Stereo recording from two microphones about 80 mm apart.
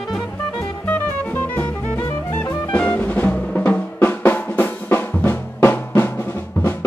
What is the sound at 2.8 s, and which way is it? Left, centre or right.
Drum, centre.